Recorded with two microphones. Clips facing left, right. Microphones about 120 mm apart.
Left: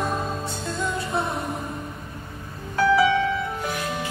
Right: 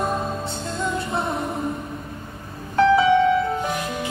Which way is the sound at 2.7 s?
25° right (ahead or behind).